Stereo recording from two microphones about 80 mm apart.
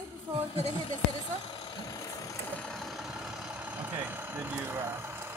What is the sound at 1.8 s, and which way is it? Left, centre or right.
Vehicle, left.